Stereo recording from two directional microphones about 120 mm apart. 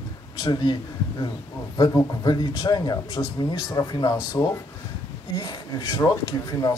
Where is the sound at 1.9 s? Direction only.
30° left (ahead or behind).